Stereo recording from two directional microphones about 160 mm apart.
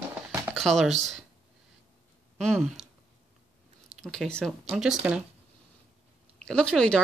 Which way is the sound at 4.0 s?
Centre (ahead or behind).